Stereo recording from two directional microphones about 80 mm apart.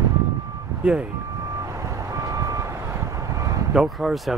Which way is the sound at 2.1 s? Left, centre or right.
Right.